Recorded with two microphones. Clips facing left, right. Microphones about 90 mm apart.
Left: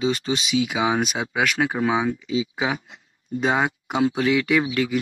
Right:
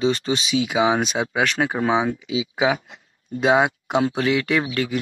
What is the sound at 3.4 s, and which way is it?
Speech, 5° right (ahead or behind).